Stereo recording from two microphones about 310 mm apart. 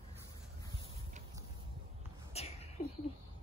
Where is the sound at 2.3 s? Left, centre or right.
Centre.